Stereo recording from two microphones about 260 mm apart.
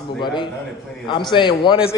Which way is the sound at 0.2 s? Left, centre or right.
Centre.